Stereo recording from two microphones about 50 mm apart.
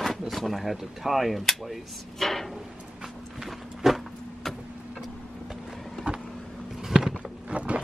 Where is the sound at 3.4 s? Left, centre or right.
Centre.